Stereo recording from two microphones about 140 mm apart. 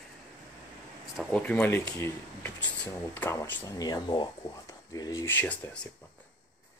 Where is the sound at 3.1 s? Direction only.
15° left (ahead or behind).